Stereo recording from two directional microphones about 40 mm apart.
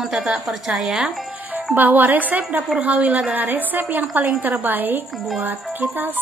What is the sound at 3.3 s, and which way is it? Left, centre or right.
A woman's voice, right.